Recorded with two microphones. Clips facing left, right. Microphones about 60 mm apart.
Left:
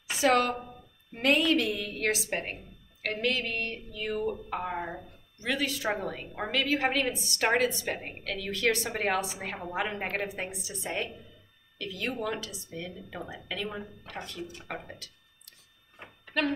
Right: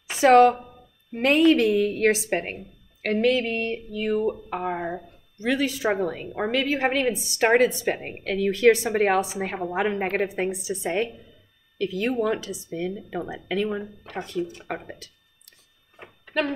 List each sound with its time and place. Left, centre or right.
0.2 s a woman's voice: right
3.2 s speech: right